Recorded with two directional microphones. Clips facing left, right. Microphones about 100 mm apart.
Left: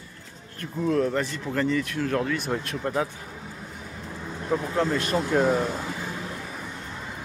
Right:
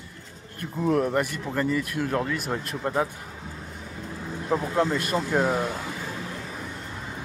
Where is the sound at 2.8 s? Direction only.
20° right (ahead or behind).